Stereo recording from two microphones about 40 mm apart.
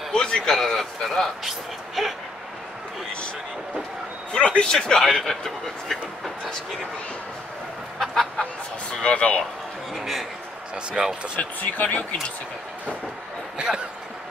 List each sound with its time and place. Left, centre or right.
0.1 s a sound: centre
0.6 s speech: centre
4.3 s speech: left
4.7 s speech: centre
8.0 s chicken: centre
8.9 s speech: left
9.9 s a man's voice: centre
11.0 s speech: centre
11.3 s speech: left